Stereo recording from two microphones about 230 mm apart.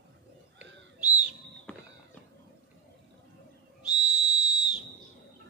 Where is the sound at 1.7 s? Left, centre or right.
Centre.